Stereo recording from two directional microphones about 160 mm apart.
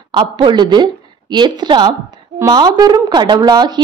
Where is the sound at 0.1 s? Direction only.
30° right (ahead or behind).